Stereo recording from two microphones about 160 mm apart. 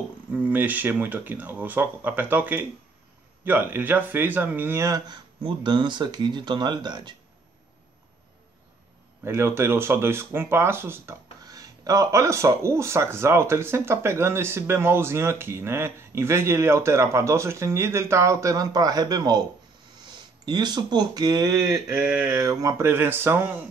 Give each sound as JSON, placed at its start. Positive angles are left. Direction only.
{"t": 0.3, "sound": "speech", "side_deg": -10}
{"t": 9.2, "sound": "speech", "side_deg": -15}
{"t": 20.4, "sound": "speech", "side_deg": -25}